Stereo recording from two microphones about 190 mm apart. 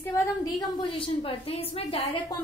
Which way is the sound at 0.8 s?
25° left (ahead or behind).